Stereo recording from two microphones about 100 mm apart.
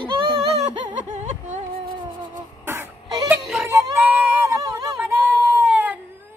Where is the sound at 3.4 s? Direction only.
Centre (ahead or behind).